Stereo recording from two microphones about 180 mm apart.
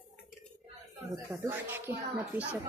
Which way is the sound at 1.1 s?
15° right (ahead or behind).